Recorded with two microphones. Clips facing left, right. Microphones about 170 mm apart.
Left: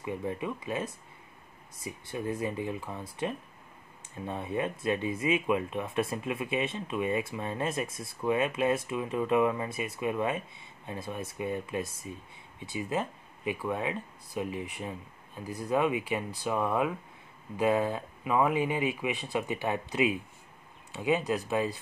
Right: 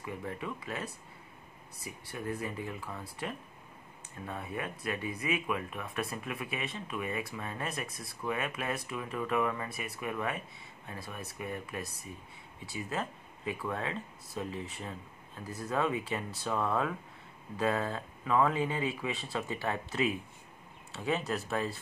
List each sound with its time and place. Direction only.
0.0 s speech: 20° left (ahead or behind)